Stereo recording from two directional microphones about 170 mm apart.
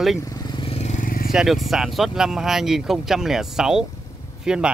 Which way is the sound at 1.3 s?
Centre (ahead or behind).